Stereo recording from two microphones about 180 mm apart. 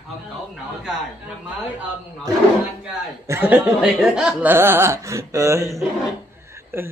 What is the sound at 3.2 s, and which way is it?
Speech, 10° right (ahead or behind).